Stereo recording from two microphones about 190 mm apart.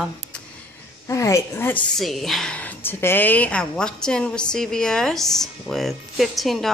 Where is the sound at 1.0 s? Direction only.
15° left (ahead or behind).